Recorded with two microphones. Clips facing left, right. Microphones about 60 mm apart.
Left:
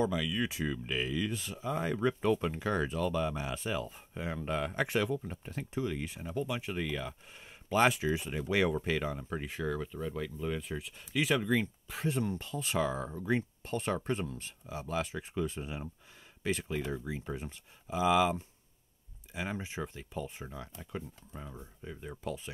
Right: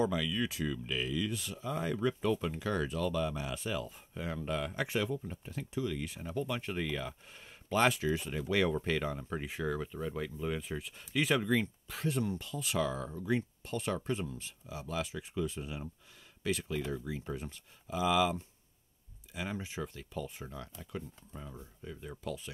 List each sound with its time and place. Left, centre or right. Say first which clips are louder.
0.0 s speech: even; centre
0.3 s speech: left 1 dB; left
5.9 s speech: left 1 dB; left
6.2 s speech: left 1 dB; centre
7.4 s speech: left 2 dB; centre
11.9 s speech: left 1 dB; left
12.3 s speech: left 1 dB; left
14.2 s speech: left 1 dB; left
14.7 s speech: left 2 dB; left